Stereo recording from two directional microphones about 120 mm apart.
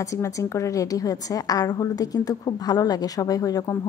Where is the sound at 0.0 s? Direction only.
25° left (ahead or behind).